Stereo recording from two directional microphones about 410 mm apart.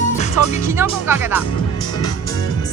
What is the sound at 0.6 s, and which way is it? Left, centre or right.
Speech, centre.